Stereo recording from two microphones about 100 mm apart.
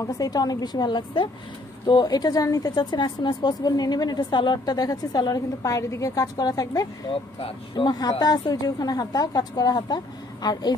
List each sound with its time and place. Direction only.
0.0 s speech: 40° left (ahead or behind)
7.4 s speech: 55° left (ahead or behind)
7.9 s speech: 40° left (ahead or behind)